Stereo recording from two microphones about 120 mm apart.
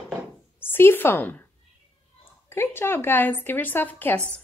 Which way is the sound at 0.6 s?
20° left (ahead or behind).